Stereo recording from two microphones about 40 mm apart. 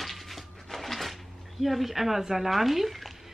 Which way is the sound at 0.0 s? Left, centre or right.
Centre.